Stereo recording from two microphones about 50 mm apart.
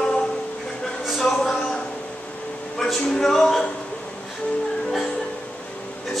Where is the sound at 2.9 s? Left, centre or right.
Centre.